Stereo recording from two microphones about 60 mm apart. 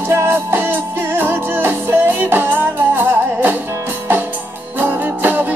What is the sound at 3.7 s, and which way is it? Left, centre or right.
Music, right.